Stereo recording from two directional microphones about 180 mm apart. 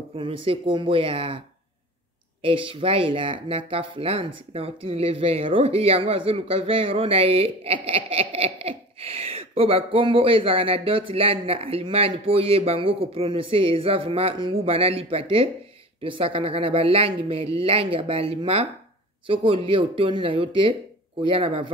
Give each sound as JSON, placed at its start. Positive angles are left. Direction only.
{"t": 0.1, "sound": "speech", "side_deg": -30}
{"t": 2.4, "sound": "speech", "side_deg": -30}